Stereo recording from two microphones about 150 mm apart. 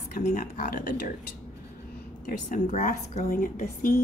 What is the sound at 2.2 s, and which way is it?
A woman's voice, 60° left (ahead or behind).